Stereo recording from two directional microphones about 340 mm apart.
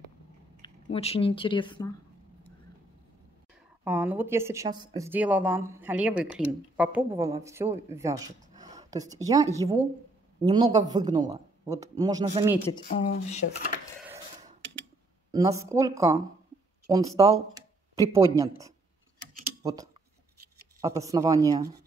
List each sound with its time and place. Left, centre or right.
0.6 s speech: centre
3.8 s a man's voice: centre
12.8 s speech: left
15.3 s a man's voice: centre